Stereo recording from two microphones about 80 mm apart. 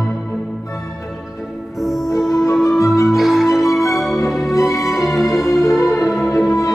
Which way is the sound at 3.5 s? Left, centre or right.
Left.